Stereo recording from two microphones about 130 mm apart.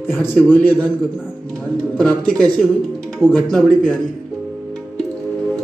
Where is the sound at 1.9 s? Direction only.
10° left (ahead or behind).